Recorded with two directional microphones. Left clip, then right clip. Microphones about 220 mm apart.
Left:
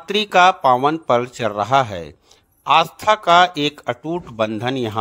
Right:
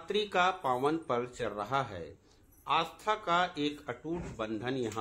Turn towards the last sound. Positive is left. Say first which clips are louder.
# left 13 dB
turn(degrees=45)  # may be behind; listen again after turning